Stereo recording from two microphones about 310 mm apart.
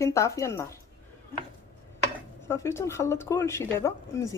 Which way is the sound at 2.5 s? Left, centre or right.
Centre.